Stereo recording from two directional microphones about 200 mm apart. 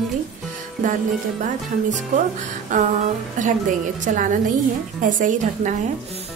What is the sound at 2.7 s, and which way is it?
A woman's voice, 40° right (ahead or behind).